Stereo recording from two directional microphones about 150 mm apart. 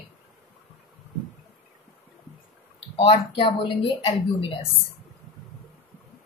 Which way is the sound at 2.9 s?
35° left (ahead or behind).